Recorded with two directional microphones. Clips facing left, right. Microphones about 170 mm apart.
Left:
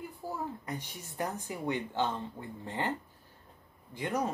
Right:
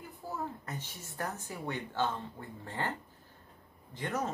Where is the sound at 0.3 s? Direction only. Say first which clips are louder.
Left 1 dB; 15° left (ahead or behind).